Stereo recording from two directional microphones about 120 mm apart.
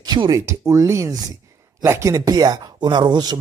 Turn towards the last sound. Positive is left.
turn(degrees=-35)  # may be behind; listen again after turning